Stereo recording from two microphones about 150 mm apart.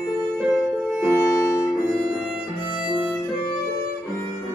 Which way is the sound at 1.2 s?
20° left (ahead or behind).